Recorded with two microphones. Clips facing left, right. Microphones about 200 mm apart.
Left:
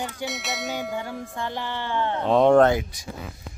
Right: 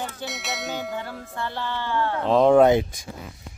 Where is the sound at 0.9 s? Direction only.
15° left (ahead or behind).